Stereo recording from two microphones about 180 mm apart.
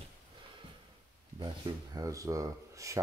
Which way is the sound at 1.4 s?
20° right (ahead or behind).